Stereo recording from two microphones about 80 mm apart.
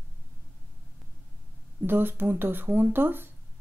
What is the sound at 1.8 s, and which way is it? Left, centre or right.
Speech, right.